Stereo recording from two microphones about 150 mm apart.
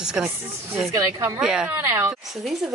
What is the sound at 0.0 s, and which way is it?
Speech, 5° right (ahead or behind).